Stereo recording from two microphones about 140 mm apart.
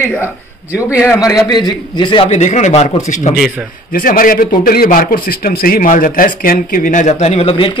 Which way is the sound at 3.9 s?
85° left.